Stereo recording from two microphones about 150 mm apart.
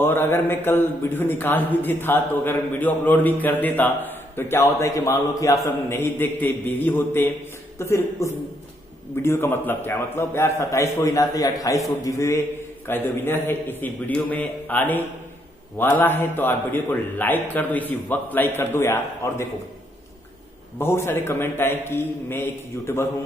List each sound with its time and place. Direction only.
0.0 s a man's voice: 15° left (ahead or behind)
20.7 s a man's voice: 15° left (ahead or behind)